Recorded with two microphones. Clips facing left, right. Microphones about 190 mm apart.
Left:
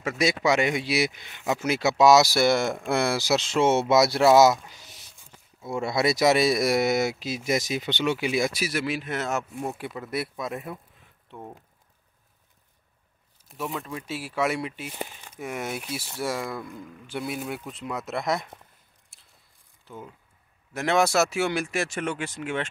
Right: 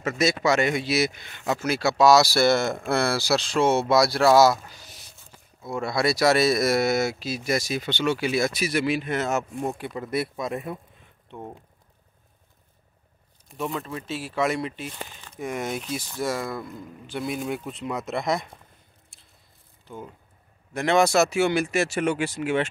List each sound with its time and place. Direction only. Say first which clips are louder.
0.0 s speech: right 1 dB; 10° left (ahead or behind)
4.6 s a sound: right 2 dB; 20° left (ahead or behind)
5.6 s speech: even; 25° left (ahead or behind); by 10.8 s centre (ahead or behind)
13.5 s speech: right 3 dB; centre (ahead or behind)
13.9 s speech: right 2 dB; 10° left (ahead or behind)
19.1 s biting: right 4 dB; 5° left (ahead or behind)
19.9 s speech: right 2 dB; 5° left (ahead or behind)